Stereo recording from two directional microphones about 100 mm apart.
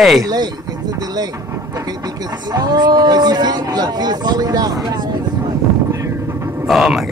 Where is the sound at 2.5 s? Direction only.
40° right (ahead or behind).